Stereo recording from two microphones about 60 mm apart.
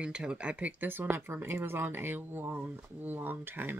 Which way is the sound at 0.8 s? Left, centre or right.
Right.